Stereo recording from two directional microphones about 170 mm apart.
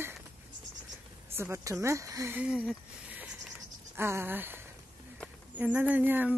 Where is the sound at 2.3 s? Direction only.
5° right (ahead or behind).